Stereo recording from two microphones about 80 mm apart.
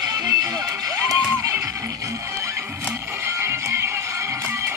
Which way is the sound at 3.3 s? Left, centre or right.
Right.